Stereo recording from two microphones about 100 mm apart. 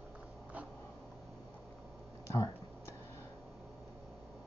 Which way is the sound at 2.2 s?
30° left (ahead or behind).